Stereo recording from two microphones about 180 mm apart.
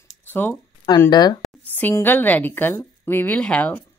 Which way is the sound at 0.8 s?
20° left (ahead or behind).